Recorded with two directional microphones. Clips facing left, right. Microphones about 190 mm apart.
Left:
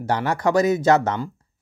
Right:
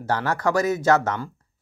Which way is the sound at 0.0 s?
15° left (ahead or behind).